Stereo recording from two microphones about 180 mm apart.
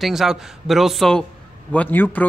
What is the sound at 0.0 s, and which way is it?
Speech, centre (ahead or behind).